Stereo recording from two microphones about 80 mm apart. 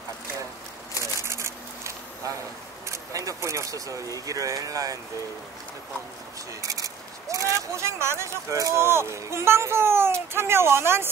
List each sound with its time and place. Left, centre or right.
1.2 s a sound: right
2.9 s speech: right
6.6 s speech: right